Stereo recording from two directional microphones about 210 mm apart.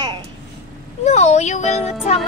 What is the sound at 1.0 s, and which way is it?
Speech, 30° left (ahead or behind).